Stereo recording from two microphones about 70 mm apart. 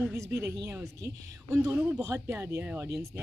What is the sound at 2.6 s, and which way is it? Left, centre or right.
Speech, right.